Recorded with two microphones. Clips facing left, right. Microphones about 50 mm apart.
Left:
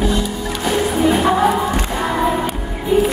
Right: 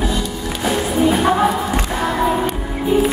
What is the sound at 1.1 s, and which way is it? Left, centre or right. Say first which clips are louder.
Music: left 1 dB; centre.